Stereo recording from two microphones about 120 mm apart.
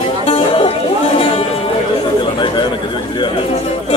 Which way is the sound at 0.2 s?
55° left (ahead or behind).